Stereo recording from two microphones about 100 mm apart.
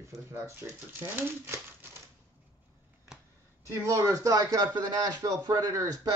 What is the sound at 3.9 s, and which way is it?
Speech, 30° right (ahead or behind).